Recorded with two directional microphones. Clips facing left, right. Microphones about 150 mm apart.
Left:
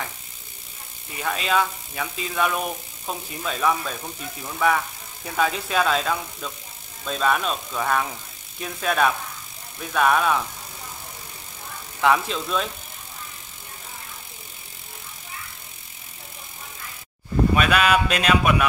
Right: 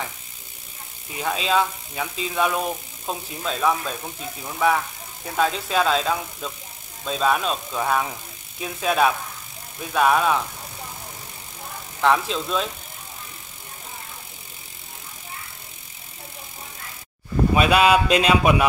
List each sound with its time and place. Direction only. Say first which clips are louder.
1.2 s speech: right 1 dB; centre (ahead or behind)
12.0 s speech: right 1 dB; centre (ahead or behind)
17.6 s a sound: right 5 dB; 20° right (ahead or behind)